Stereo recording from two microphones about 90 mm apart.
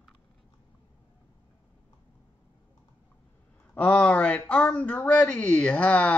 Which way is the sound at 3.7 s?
15° left (ahead or behind).